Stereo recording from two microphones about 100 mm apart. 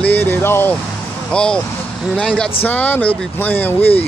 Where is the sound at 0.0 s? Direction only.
15° left (ahead or behind).